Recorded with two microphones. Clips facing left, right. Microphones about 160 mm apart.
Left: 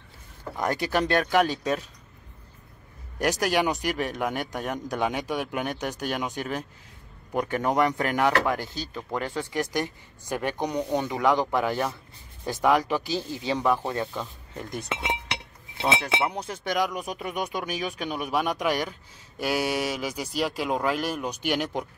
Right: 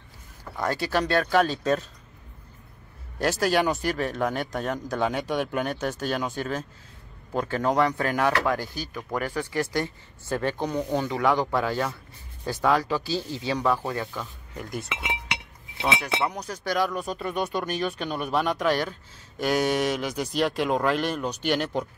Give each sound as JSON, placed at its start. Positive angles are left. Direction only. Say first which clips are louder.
{"t": 0.6, "sound": "speech", "louder": "even", "side_deg": 20}
{"t": 3.2, "sound": "speech", "louder": "right 1 dB", "side_deg": 15}